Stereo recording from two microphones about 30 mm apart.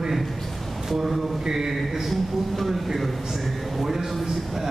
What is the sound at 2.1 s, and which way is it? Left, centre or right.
A man's voice, centre.